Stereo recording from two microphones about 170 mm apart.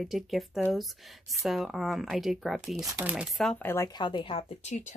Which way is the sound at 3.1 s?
Centre (ahead or behind).